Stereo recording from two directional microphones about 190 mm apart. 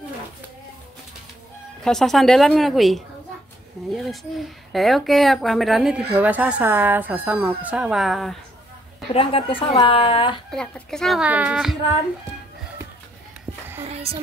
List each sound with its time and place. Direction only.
1.8 s speech: centre (ahead or behind)
9.1 s speech: 30° left (ahead or behind)
10.5 s speech: 5° left (ahead or behind)
13.8 s speech: 30° right (ahead or behind)